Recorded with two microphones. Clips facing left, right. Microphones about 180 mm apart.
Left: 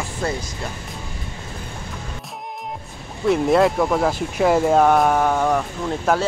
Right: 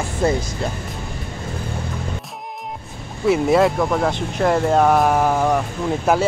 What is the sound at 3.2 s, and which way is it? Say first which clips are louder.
Speech: right 1 dB; 5° right (ahead or behind).